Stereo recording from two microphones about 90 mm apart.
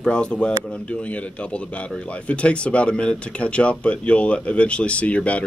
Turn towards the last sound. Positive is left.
turn(degrees=15)  # may be behind; listen again after turning